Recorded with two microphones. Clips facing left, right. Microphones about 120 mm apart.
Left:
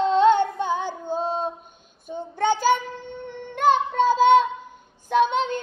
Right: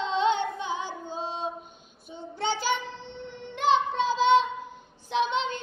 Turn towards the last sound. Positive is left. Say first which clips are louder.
# left 6 dB
turn(degrees=45)  # may be behind; listen again after turning